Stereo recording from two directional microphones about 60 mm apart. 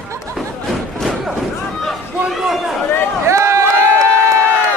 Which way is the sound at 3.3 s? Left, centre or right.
Right.